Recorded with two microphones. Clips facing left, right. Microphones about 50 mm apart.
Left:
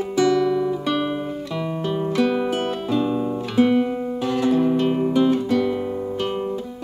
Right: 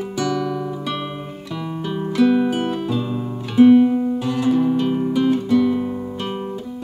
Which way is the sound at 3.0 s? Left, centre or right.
Centre.